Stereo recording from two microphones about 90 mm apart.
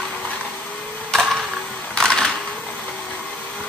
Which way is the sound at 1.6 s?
10° left (ahead or behind).